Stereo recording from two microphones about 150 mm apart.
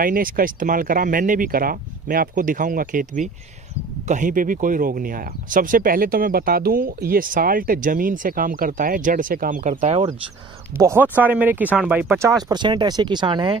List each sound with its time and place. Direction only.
0.0 s speech: 70° right (ahead or behind)
10.8 s speech: 15° right (ahead or behind)
12.4 s speech: 30° right (ahead or behind)